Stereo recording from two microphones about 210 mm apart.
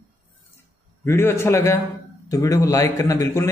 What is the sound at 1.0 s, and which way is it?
Speech, 10° left (ahead or behind).